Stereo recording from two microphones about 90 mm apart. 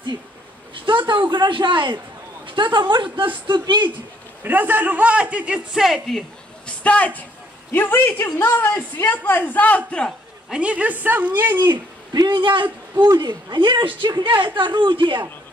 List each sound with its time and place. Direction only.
0.8 s speech: 60° right (ahead or behind)
4.4 s a man's voice: 20° right (ahead or behind); by 6.7 s centre (ahead or behind)
6.8 s speech: 15° left (ahead or behind)
10.5 s a man's voice: 15° right (ahead or behind)
11.6 s speech: 50° right (ahead or behind)
12.6 s a woman's voice: 20° right (ahead or behind)
13.2 s speech: 55° right (ahead or behind)